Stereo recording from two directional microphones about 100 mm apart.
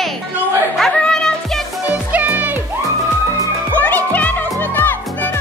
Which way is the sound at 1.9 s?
15° right (ahead or behind).